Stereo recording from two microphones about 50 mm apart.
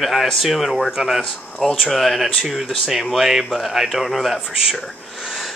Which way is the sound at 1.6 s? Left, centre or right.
Centre.